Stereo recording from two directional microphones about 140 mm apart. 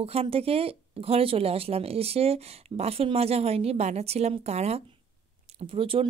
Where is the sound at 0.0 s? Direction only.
45° right (ahead or behind).